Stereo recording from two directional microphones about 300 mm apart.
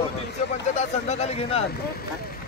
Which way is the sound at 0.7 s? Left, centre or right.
Left.